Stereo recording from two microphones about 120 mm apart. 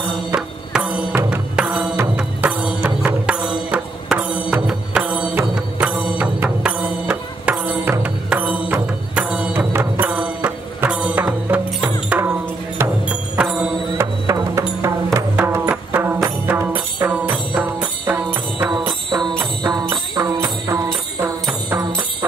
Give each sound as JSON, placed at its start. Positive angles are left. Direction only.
{"t": 0.3, "sound": "music", "side_deg": -10}
{"t": 13.9, "sound": "music", "side_deg": -25}
{"t": 18.7, "sound": "music", "side_deg": -40}